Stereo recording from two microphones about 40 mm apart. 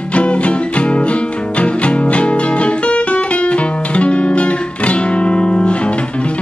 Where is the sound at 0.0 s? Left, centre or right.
Left.